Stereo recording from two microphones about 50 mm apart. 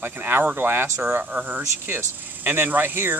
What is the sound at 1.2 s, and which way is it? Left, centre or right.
Speech, right.